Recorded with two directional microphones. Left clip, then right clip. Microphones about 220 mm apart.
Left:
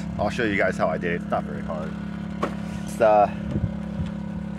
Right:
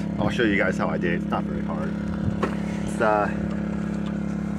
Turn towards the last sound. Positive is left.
turn(degrees=45)  # may be behind; listen again after turning